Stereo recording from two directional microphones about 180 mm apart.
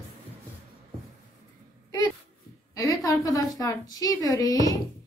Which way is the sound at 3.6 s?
20° left (ahead or behind).